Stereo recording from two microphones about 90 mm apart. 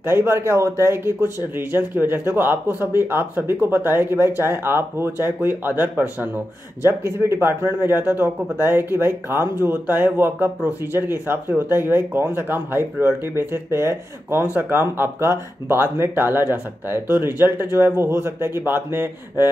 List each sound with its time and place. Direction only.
0.0 s a man's voice: 25° right (ahead or behind)